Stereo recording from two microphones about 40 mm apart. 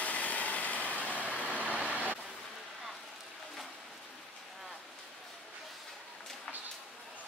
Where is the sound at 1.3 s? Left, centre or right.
Right.